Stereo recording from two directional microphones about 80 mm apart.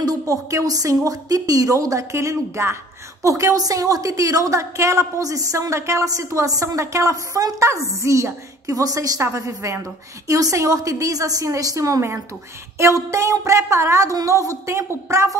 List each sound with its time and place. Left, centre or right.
0.0 s a woman's voice: right
9.2 s a woman's voice: right